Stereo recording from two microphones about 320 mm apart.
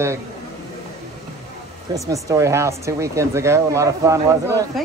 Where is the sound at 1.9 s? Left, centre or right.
Centre.